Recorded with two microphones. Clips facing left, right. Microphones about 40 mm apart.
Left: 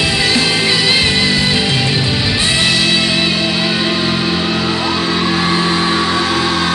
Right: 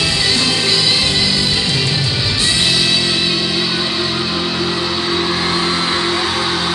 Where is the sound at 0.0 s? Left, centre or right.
Left.